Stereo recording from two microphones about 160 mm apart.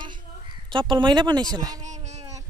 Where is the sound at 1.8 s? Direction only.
45° right (ahead or behind).